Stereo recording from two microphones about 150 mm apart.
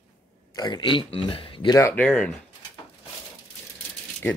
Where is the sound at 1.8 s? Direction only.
15° left (ahead or behind).